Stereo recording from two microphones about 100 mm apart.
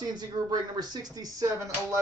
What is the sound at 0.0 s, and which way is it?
Speech, 45° right (ahead or behind).